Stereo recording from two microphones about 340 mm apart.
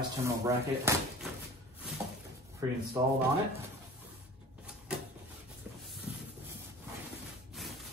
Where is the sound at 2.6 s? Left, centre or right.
Centre.